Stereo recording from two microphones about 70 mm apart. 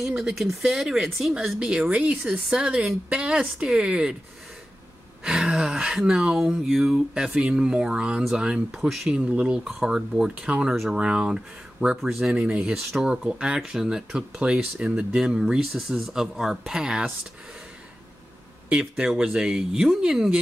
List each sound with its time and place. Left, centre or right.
0.0 s speech: centre
1.6 s speech: centre
5.2 s speech: centre
9.1 s speech: centre
18.7 s speech: centre